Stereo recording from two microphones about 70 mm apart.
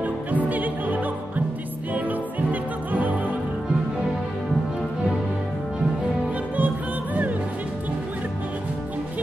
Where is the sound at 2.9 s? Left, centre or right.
Right.